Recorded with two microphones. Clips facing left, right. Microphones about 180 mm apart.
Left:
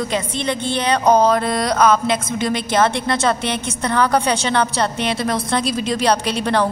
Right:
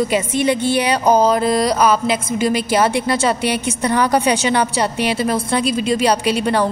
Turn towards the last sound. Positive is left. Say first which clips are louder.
# right 2 dB
turn(degrees=-5)  # may be behind; listen again after turning